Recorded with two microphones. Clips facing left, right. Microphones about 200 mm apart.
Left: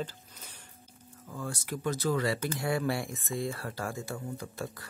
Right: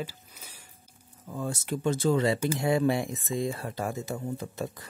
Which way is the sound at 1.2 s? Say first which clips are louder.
Right 5 dB; 20° right (ahead or behind).